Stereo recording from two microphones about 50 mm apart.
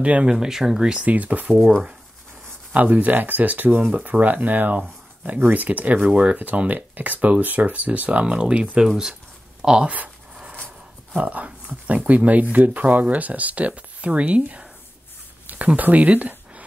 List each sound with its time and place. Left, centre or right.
0.0 s speech: right
0.3 s speech: centre
1.0 s speech: right
2.7 s speech: right
8.8 s speech: centre
9.8 s speech: right
11.1 s speech: right
15.4 s a sound: right